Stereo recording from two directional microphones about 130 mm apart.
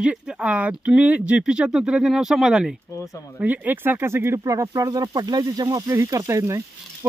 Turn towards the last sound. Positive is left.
turn(degrees=-25)  # may be behind; listen again after turning